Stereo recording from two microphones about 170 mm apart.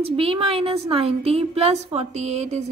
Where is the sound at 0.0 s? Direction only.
35° right (ahead or behind).